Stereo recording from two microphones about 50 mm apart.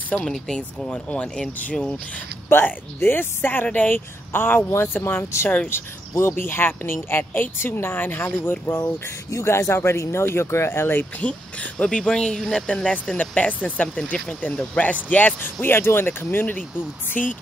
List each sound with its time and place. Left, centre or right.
0.2 s speech: centre
0.8 s speech: left
2.5 s speech: left
6.3 s speech: left
9.3 s speech: left
11.1 s speech: left
13.2 s speech: left
15.6 s speech: left
17.2 s speech: left